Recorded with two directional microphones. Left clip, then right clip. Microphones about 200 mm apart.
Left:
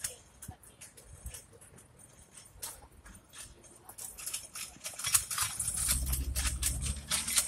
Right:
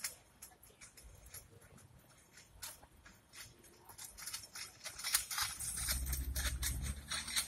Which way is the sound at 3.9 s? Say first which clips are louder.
Left 4 dB; 25° left (ahead or behind).